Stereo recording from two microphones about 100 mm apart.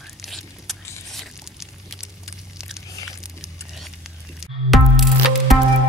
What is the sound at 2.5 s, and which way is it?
Biting, 5° right (ahead or behind).